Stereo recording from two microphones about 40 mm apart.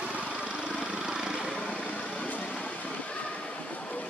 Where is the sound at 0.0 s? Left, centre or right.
Right.